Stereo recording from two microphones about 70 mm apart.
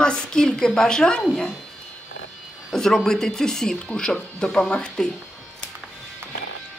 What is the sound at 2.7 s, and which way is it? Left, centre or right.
Speech, centre.